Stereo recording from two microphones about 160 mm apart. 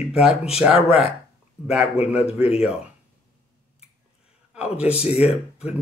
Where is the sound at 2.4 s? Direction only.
40° left (ahead or behind).